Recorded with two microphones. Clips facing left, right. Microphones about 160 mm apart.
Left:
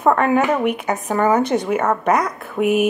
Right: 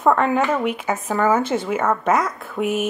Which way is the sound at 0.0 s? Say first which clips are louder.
Left 2 dB; 10° left (ahead or behind).